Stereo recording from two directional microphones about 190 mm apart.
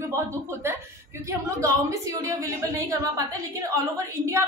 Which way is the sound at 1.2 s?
15° right (ahead or behind).